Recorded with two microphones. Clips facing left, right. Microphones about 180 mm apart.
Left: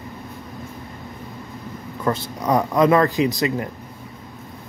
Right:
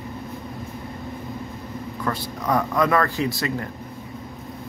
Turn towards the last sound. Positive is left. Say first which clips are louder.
# left 5 dB
turn(degrees=20)  # may be behind; listen again after turning